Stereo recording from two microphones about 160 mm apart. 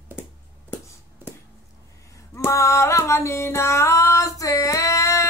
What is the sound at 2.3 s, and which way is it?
Music, 20° left (ahead or behind).